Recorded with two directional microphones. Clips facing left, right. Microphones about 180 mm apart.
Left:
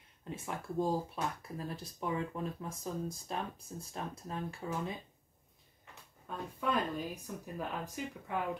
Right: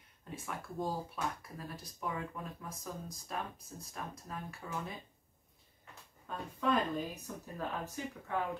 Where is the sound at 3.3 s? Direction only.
25° left (ahead or behind).